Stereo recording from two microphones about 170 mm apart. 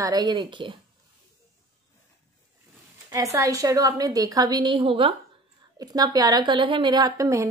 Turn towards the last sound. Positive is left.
turn(degrees=-20)  # may be behind; listen again after turning